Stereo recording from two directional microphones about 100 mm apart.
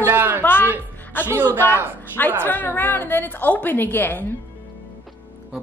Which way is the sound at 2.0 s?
20° left (ahead or behind).